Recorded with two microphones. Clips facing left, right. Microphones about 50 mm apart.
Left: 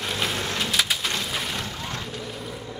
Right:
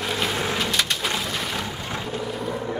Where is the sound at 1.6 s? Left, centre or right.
Centre.